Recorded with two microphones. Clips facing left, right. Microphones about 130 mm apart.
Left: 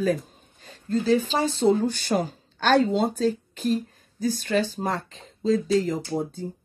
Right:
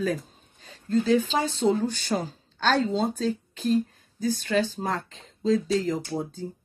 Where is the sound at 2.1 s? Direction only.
25° left (ahead or behind).